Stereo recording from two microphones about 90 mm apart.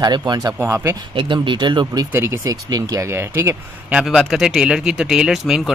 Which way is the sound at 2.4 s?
40° right (ahead or behind).